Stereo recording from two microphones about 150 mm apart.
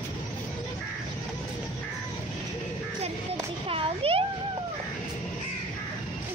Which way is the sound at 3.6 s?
40° right (ahead or behind).